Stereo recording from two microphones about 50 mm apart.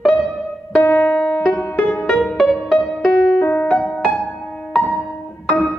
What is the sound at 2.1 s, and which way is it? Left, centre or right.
Music, centre.